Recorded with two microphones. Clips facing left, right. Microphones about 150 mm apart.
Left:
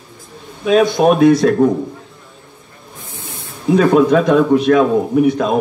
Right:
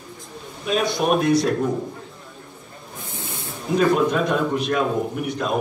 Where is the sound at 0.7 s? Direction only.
60° left (ahead or behind).